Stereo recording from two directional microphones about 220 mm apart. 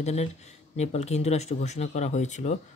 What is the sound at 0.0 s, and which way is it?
Speech, 30° left (ahead or behind).